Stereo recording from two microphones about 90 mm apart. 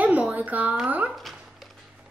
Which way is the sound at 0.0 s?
15° right (ahead or behind).